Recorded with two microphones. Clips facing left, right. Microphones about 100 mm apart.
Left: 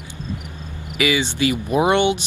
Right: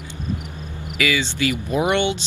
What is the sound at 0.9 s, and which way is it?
Speech, 20° left (ahead or behind).